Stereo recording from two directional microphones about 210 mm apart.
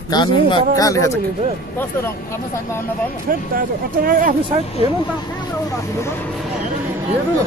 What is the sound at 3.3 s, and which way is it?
Speech, 45° right (ahead or behind).